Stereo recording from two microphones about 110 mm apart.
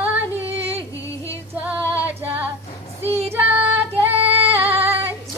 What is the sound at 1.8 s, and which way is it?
Female singing, 25° left (ahead or behind).